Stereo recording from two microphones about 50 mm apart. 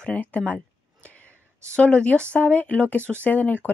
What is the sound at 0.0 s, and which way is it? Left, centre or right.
Speech, left.